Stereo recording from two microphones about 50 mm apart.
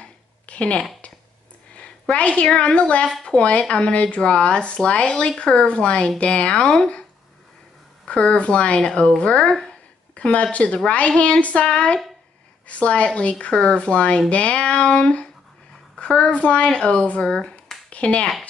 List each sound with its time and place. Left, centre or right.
0.0 s a sound: left
1.8 s a woman's voice: left
8.0 s speech: centre